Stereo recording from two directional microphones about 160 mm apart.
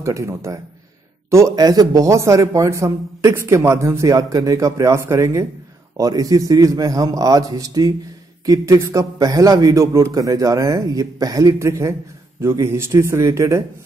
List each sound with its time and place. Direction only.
0.0 s a man's voice: 20° right (ahead or behind)